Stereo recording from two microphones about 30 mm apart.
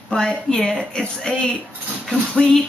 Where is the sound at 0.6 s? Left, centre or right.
Centre.